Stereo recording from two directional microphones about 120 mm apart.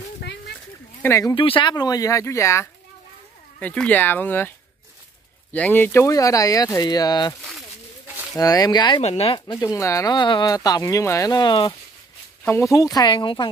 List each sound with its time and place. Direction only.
1.0 s speech: 25° left (ahead or behind)
1.3 s speech: 45° left (ahead or behind); by 2.7 s 25° left (ahead or behind)
3.5 s speech: 10° left (ahead or behind); by 7.3 s 35° left (ahead or behind)
8.4 s speech: 30° left (ahead or behind)
9.0 s speech: 60° left (ahead or behind)
9.5 s speech: 30° left (ahead or behind)
10.1 s speech: 40° left (ahead or behind)
12.7 s speech: 30° left (ahead or behind)